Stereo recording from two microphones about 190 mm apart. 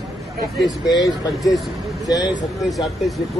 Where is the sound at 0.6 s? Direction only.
20° left (ahead or behind).